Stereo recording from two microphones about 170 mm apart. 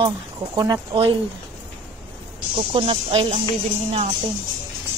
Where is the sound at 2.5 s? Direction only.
30° right (ahead or behind).